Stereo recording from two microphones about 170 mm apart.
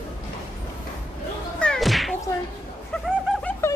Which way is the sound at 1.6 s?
Centre (ahead or behind).